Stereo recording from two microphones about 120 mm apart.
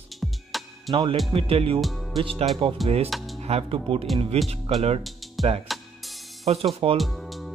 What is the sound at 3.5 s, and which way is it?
Speech, 55° right (ahead or behind).